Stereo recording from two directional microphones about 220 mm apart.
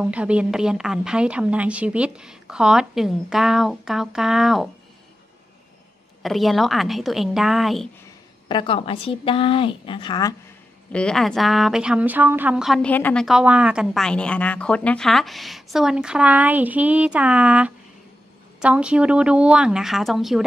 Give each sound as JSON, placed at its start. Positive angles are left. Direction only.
{"t": 0.0, "sound": "a woman's voice", "side_deg": -5}
{"t": 6.2, "sound": "a woman's voice", "side_deg": 0}
{"t": 8.5, "sound": "a woman's voice", "side_deg": 20}
{"t": 10.9, "sound": "a woman's voice", "side_deg": 5}